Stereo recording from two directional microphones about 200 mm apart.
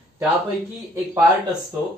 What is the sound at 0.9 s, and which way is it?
Speech, 15° right (ahead or behind).